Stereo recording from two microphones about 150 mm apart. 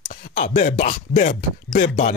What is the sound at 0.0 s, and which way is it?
Speech, 60° left (ahead or behind).